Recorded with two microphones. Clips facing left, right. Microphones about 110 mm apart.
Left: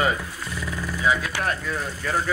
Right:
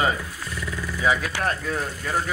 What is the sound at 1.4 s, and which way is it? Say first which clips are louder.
Speech: right 1 dB; 40° right (ahead or behind).